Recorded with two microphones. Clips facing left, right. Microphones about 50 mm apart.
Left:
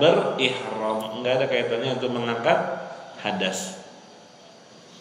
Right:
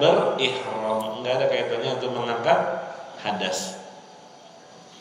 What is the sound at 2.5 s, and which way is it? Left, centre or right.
Speech, centre.